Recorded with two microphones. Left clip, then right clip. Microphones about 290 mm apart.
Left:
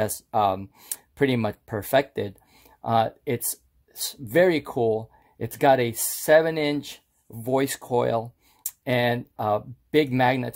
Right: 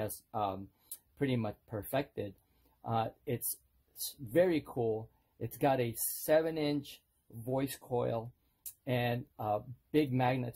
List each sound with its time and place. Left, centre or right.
0.0 s speech: left